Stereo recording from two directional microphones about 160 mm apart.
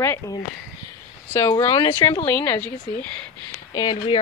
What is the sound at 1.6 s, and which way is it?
Speech, 25° left (ahead or behind).